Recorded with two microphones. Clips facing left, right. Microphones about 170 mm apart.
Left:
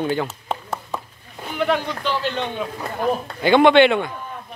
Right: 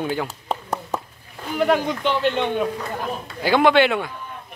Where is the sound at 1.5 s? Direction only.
45° right (ahead or behind).